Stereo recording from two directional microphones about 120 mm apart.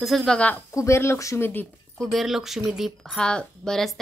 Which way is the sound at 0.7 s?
25° left (ahead or behind).